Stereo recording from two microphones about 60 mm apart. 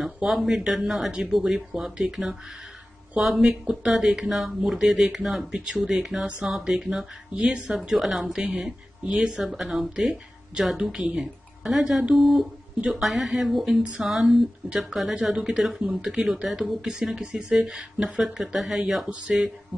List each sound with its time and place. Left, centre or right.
0.0 s speech: centre